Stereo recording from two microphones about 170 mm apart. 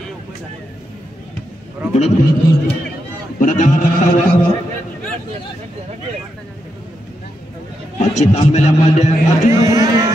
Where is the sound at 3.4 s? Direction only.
50° left (ahead or behind).